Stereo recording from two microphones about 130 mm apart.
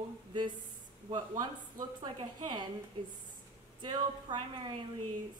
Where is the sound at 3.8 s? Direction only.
35° right (ahead or behind).